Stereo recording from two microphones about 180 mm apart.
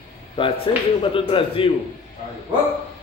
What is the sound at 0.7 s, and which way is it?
Speech, 25° left (ahead or behind).